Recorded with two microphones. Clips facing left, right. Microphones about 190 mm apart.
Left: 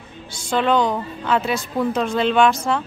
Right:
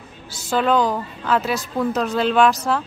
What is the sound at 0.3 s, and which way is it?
A woman's voice, 5° right (ahead or behind).